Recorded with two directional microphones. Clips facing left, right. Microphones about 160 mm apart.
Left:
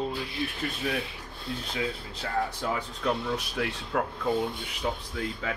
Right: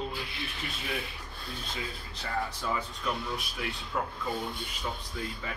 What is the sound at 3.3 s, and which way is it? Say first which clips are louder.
Speech: left 5 dB; 85° left.